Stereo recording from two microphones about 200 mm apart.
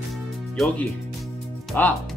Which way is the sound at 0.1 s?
5° left (ahead or behind).